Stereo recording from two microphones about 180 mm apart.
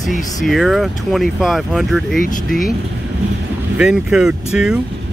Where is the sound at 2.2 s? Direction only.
50° left (ahead or behind).